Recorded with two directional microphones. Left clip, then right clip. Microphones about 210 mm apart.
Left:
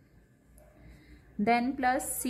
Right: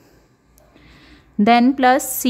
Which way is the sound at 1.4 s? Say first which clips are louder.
Right 14 dB; 40° right (ahead or behind).